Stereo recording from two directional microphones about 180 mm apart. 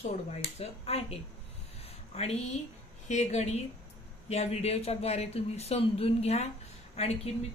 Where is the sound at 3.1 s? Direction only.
40° left (ahead or behind).